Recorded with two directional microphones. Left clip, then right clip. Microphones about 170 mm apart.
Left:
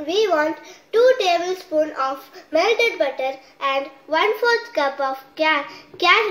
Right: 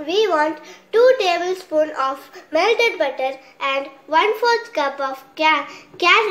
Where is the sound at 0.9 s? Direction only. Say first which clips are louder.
Right 1 dB; centre (ahead or behind).